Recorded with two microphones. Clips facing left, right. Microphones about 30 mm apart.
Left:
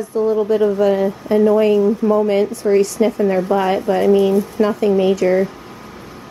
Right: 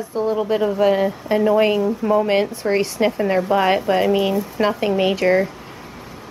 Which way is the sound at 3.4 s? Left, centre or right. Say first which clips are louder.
Left 1 dB; centre.